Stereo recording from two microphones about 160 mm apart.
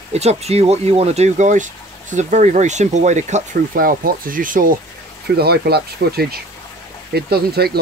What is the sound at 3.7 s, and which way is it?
Speech, 65° right (ahead or behind).